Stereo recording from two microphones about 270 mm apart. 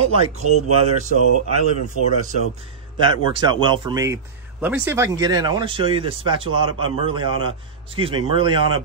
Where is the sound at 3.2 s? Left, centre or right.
Centre.